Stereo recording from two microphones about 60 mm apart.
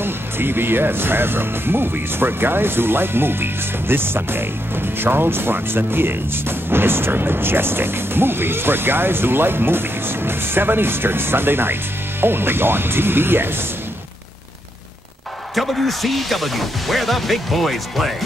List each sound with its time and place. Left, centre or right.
0.0 s speech: right
15.5 s speech: centre